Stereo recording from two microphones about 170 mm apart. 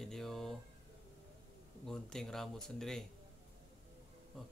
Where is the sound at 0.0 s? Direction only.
Centre (ahead or behind).